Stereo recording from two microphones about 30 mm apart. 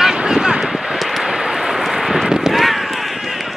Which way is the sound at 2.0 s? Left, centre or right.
Centre.